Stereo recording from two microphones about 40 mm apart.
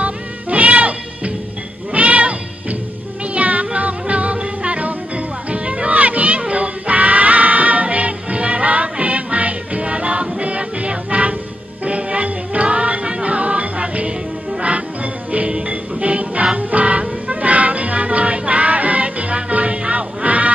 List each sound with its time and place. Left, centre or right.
0.0 s music: right
15.3 s music: right